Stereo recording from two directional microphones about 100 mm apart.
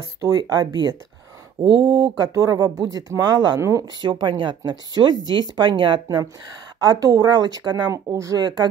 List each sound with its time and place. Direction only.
0.0 s speech: 35° right (ahead or behind)
3.6 s speech: 35° right (ahead or behind)
4.0 s speech: 50° right (ahead or behind)
6.8 s speech: 40° right (ahead or behind)
7.9 s speech: 30° right (ahead or behind)